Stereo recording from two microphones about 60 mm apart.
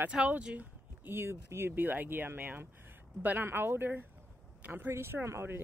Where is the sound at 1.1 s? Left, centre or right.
Right.